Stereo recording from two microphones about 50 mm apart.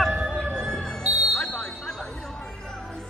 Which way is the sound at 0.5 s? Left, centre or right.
Centre.